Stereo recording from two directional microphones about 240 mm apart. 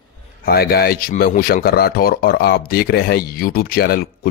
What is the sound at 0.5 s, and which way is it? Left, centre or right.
Speech, left.